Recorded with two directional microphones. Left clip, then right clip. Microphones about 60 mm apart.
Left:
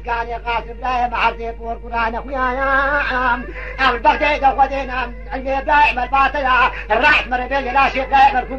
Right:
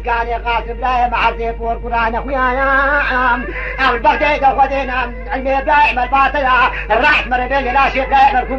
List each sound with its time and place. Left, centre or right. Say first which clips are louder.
0.1 s a man's voice: right 4 dB; right